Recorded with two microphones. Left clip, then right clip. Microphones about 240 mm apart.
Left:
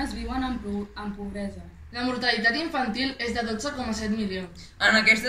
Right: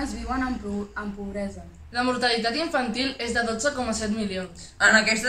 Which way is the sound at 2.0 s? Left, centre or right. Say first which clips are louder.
Right 2 dB; centre.